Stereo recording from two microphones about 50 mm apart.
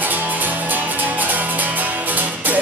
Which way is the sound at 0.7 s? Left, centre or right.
Right.